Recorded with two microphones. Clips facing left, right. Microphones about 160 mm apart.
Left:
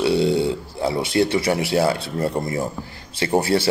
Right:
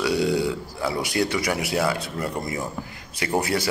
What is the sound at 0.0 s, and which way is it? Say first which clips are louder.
A man's voice: left 4 dB; 25° left (ahead or behind).